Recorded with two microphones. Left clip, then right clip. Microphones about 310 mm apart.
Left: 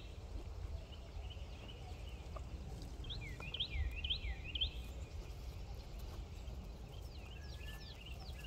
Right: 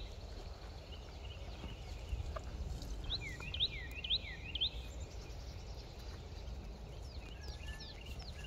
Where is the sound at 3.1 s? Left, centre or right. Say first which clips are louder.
Right 5 dB; left.